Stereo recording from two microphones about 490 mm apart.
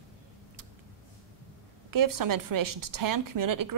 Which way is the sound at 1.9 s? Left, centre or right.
Right.